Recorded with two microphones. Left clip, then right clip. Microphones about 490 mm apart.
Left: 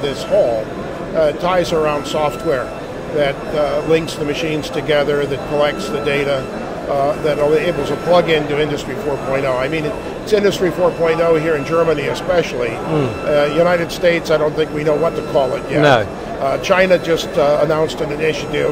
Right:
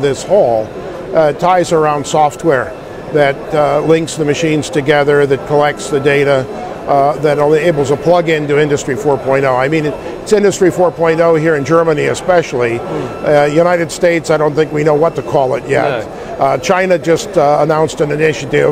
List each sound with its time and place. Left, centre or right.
1.1 s speech: right